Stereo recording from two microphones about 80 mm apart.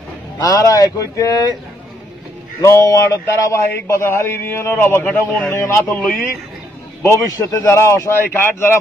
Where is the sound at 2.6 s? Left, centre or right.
Left.